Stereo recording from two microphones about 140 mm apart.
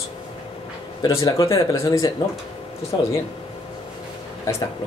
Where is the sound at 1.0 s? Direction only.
25° left (ahead or behind).